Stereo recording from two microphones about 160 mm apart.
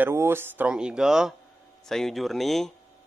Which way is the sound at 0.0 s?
15° right (ahead or behind).